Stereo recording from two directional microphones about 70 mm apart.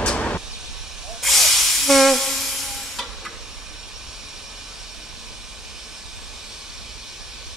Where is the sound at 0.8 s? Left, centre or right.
Centre.